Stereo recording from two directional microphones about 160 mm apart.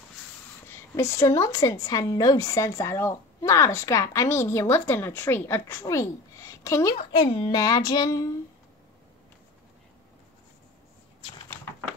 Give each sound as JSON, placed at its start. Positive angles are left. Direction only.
{"t": 0.9, "sound": "a woman's voice", "side_deg": 20}
{"t": 7.1, "sound": "a woman's voice", "side_deg": 30}